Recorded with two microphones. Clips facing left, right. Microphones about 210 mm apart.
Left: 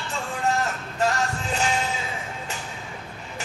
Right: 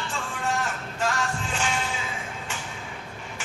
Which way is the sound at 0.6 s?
35° left (ahead or behind).